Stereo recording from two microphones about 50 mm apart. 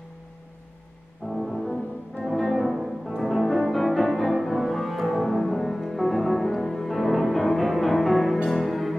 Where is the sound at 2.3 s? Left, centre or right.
Centre.